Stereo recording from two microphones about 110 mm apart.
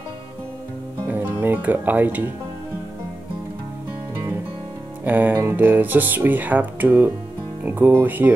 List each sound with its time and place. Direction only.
1.0 s music: 20° right (ahead or behind)
5.0 s speech: 15° right (ahead or behind)